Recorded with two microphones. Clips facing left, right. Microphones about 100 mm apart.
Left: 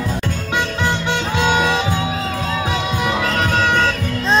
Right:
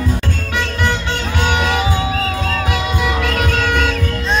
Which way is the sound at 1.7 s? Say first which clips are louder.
Right 2 dB; 5° right (ahead or behind).